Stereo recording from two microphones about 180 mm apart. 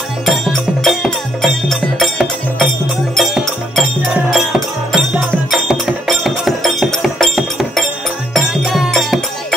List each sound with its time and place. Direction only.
0.2 s music: centre (ahead or behind)